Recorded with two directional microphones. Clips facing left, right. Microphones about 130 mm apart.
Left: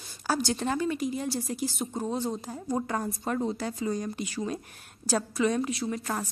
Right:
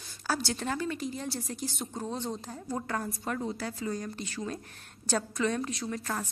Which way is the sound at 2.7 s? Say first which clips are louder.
Left 3 dB; 20° left (ahead or behind).